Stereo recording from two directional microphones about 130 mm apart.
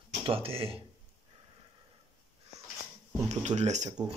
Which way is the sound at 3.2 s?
60° right (ahead or behind).